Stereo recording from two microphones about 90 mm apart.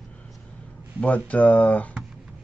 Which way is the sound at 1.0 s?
15° left (ahead or behind).